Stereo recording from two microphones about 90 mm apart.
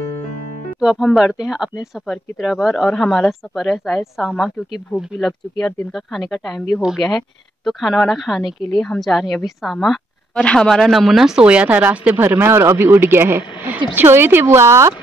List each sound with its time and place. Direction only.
0.7 s speech: 5° right (ahead or behind)
10.4 s speech: 10° left (ahead or behind); by 15.0 s 30° right (ahead or behind)